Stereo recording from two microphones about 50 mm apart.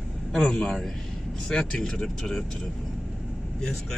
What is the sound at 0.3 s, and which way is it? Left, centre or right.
Speech, centre.